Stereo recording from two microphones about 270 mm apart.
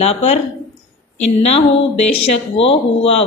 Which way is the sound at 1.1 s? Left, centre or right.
Left.